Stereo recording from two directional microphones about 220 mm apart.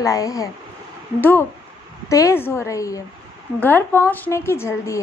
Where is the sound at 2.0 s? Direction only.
15° left (ahead or behind).